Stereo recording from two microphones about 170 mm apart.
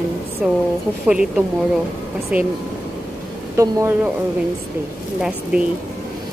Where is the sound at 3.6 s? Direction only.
20° right (ahead or behind).